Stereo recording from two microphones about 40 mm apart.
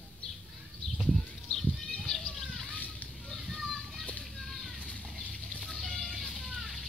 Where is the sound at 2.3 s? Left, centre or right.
Centre.